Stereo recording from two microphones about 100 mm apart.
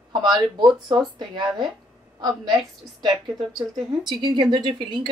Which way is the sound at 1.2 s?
45° right (ahead or behind).